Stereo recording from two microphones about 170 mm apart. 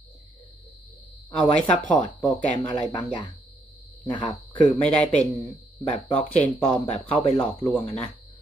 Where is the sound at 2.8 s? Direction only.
25° left (ahead or behind).